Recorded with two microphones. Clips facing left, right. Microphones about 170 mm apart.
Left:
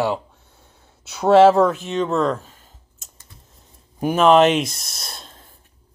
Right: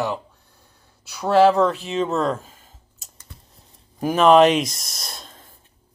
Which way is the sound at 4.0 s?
Centre (ahead or behind).